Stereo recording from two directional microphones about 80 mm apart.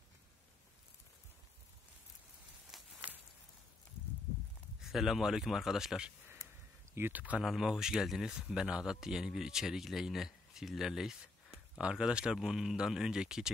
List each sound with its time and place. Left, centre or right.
2.7 s a sound: centre
4.8 s speech: centre
6.9 s speech: right
7.4 s speech: centre